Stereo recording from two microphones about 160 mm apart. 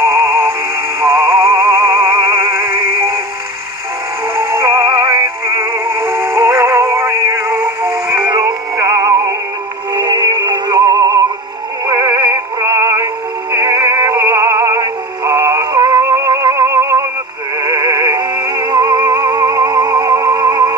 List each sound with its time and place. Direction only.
1.0 s music: 20° right (ahead or behind)
4.5 s music: 20° right (ahead or behind)
11.8 s synthetic singing: 25° right (ahead or behind)
17.6 s music: 25° right (ahead or behind)